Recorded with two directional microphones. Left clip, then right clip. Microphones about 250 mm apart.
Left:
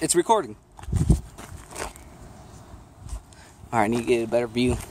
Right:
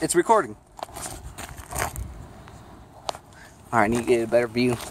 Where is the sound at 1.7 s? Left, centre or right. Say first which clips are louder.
Right 6 dB; centre.